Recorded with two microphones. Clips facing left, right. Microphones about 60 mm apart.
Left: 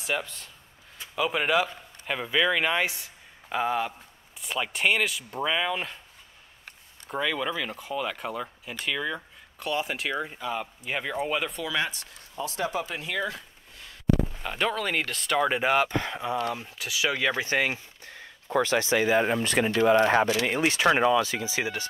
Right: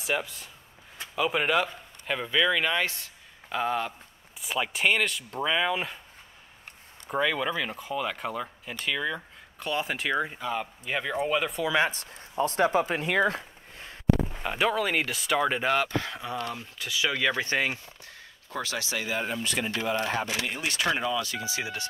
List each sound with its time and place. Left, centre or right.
0.0 s speech: centre
7.1 s speech: centre
11.6 s speech: right
11.9 s a sound: right
14.4 s speech: centre
18.7 s speech: left
19.2 s speech: left
19.7 s speech: left
20.7 s speech: left